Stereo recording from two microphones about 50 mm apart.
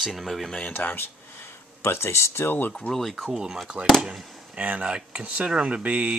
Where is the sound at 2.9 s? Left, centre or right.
Centre.